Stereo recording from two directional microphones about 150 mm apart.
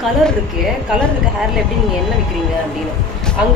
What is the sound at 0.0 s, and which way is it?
A woman's voice, centre (ahead or behind).